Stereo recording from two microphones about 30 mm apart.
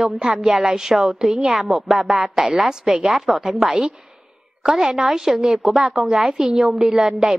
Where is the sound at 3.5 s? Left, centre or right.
Right.